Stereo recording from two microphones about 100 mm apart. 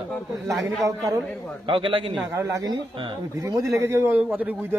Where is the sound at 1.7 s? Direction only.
60° right (ahead or behind).